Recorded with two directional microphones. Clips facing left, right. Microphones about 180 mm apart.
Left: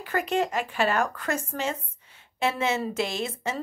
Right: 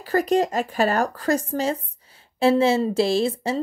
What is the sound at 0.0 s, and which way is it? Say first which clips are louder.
Speech: right 6 dB; 35° right (ahead or behind).